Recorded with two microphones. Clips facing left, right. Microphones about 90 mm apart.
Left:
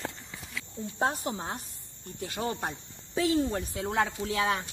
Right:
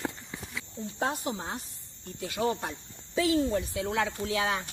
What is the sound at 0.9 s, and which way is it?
Speech, 35° left (ahead or behind).